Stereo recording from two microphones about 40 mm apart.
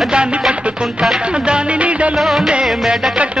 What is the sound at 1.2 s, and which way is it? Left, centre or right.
Music, right.